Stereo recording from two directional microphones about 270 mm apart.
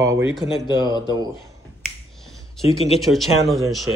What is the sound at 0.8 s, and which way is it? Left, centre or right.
Speech, centre.